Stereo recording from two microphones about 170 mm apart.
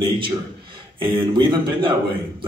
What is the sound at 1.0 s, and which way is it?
Speech, 30° right (ahead or behind).